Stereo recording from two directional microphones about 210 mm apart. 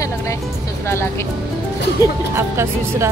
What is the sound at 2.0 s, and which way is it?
Speech, 15° left (ahead or behind).